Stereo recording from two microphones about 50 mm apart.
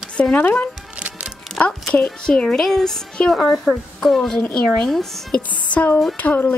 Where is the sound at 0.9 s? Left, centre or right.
Right.